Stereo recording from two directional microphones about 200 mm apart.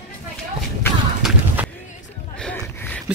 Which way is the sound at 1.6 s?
10° right (ahead or behind).